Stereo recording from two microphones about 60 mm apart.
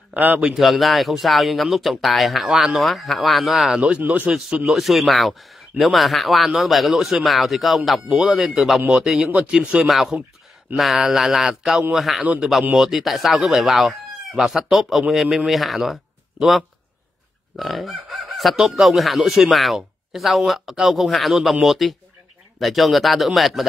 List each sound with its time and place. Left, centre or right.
0.1 s a man's voice: right
0.6 s speech: centre
4.0 s a man's voice: right
4.3 s speech: centre
9.8 s speech: centre